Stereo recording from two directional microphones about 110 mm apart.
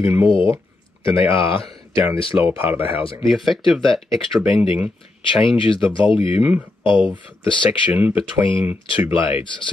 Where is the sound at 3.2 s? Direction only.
Centre (ahead or behind).